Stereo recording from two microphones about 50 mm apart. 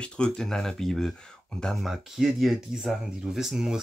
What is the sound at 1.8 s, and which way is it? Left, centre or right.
Speech, centre.